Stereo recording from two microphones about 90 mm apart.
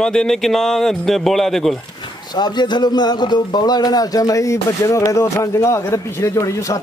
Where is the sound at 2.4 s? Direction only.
55° left (ahead or behind); by 6.8 s 35° left (ahead or behind).